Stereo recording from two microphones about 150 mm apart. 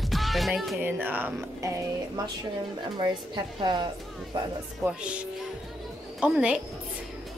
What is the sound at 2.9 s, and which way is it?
Speech, 30° right (ahead or behind).